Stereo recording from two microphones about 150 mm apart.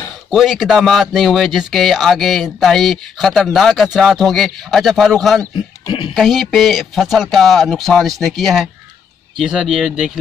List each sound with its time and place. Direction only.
0.3 s speech: centre (ahead or behind)
5.9 s speech: 30° left (ahead or behind)
6.1 s speech: centre (ahead or behind)